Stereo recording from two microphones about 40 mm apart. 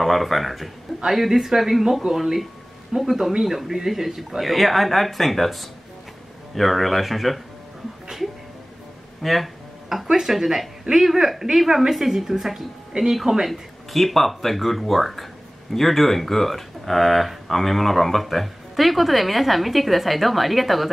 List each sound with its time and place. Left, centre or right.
0.0 s a woman's voice: centre
9.2 s a sound: centre
10.1 s a woman's voice: centre
13.9 s speech: centre